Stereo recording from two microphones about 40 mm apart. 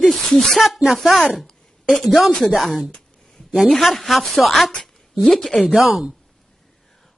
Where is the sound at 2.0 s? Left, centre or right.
Centre.